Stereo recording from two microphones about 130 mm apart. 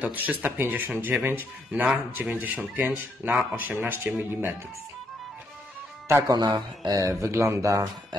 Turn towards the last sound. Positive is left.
turn(degrees=-25)  # may be behind; listen again after turning